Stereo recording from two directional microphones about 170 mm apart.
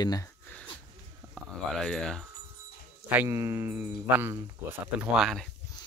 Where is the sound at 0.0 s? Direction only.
20° left (ahead or behind).